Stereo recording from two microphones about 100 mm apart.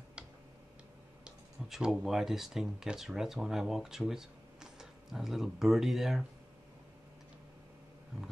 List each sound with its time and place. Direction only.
1.2 s speech: 5° right (ahead or behind)